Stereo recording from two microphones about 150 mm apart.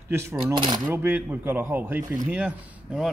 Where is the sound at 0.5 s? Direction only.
30° right (ahead or behind).